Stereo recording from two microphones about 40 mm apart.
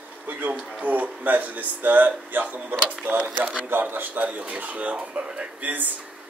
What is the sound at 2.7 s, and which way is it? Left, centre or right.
Speech, right.